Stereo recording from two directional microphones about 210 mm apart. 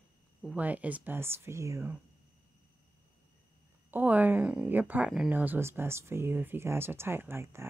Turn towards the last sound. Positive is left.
turn(degrees=-10)  # may be behind; listen again after turning